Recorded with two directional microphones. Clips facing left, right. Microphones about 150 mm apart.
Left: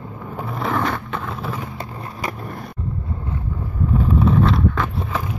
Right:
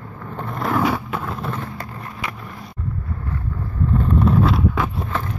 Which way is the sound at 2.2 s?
40° left (ahead or behind).